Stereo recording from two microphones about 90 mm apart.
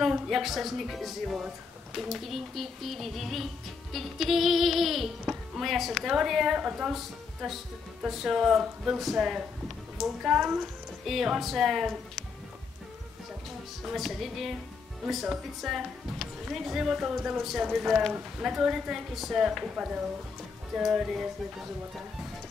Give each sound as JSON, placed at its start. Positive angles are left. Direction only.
{"t": 0.0, "sound": "speech", "side_deg": 0}
{"t": 2.0, "sound": "music", "side_deg": 0}
{"t": 13.8, "sound": "music", "side_deg": 0}